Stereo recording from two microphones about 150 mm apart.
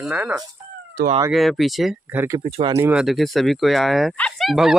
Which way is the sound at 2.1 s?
20° right (ahead or behind).